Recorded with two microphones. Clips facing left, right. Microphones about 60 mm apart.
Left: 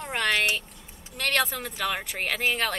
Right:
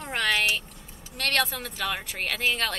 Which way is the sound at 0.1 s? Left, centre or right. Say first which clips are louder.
Even; centre.